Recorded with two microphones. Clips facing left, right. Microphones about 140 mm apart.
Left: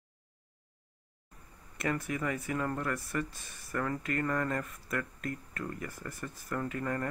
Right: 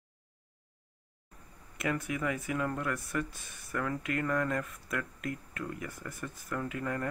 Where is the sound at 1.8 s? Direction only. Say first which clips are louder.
Even; 5° right (ahead or behind).